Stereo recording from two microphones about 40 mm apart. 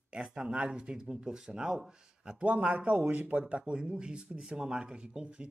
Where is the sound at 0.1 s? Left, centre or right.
Right.